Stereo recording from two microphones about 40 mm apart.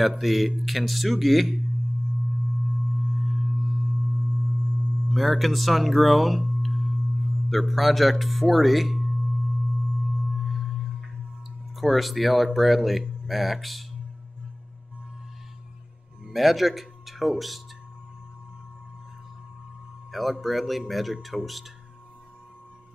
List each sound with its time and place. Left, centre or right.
0.0 s speech: centre
3.0 s singing bowl: right
3.8 s sine wave: right
5.1 s speech: centre
6.6 s singing bowl: centre
7.4 s speech: centre
9.2 s singing bowl: right
10.4 s singing bowl: centre
11.7 s speech: centre
16.3 s speech: centre
20.1 s speech: centre